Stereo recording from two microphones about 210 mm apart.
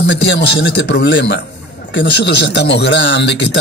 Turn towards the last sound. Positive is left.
turn(degrees=55)  # may be behind; listen again after turning